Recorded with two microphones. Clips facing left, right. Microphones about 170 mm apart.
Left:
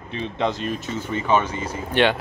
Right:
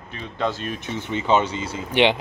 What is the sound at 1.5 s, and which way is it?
Speech, 75° right (ahead or behind).